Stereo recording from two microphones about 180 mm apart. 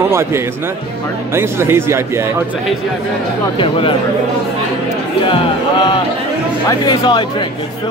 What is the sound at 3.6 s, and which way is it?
Speech, 30° left (ahead or behind).